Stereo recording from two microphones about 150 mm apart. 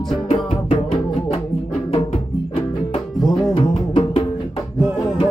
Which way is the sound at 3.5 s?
35° left (ahead or behind).